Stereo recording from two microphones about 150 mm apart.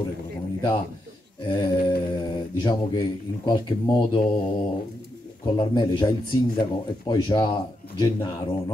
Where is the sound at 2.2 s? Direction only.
30° left (ahead or behind).